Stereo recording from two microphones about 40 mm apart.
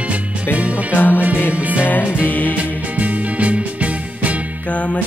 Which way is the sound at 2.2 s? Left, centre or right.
Left.